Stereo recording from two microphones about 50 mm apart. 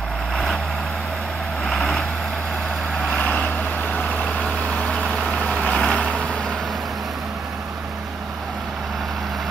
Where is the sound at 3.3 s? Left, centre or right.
Left.